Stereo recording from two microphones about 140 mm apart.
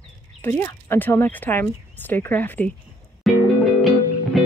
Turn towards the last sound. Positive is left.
turn(degrees=0)  # may be behind; listen again after turning